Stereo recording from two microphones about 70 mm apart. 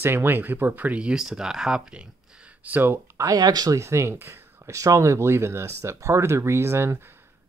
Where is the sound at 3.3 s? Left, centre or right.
Right.